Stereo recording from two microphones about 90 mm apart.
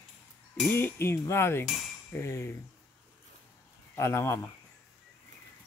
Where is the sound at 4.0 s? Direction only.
30° left (ahead or behind).